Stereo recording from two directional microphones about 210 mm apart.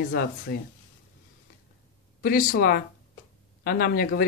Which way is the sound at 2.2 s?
40° left (ahead or behind).